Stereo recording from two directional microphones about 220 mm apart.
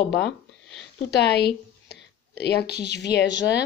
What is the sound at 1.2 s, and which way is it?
Speech, 50° left (ahead or behind).